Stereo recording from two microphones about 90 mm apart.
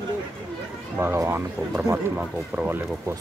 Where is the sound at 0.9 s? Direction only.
20° right (ahead or behind).